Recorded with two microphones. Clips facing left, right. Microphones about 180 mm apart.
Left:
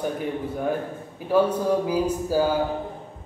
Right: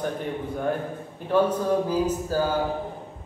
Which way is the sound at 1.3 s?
10° left (ahead or behind).